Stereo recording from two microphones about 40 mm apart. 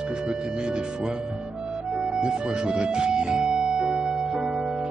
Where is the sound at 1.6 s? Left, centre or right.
Right.